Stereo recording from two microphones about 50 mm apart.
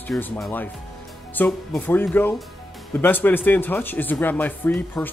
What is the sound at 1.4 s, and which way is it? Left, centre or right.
Speech, left.